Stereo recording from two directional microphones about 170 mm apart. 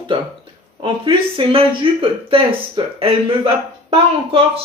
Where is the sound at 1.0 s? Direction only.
30° right (ahead or behind).